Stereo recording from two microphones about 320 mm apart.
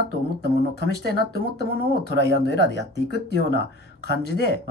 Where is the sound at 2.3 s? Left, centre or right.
Left.